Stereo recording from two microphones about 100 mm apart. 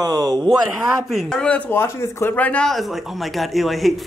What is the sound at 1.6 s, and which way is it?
Speech, 20° left (ahead or behind).